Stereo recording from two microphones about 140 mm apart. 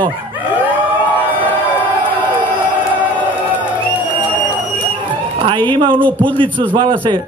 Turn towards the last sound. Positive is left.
turn(degrees=-35)  # may be behind; listen again after turning